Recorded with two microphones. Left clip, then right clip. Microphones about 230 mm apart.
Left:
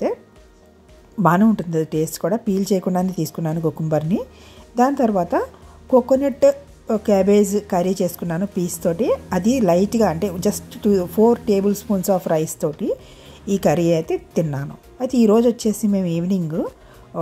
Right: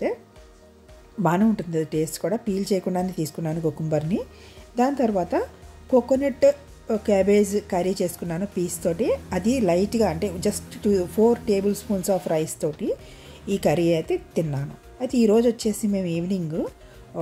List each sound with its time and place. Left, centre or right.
1.2 s a woman's voice: centre
17.1 s music: centre